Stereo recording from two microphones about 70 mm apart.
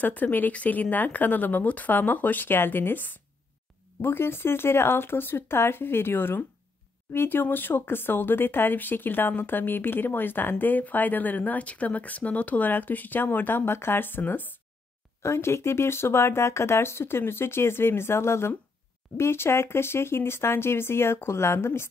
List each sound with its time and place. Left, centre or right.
0.0 s speech: left
15.2 s speech: left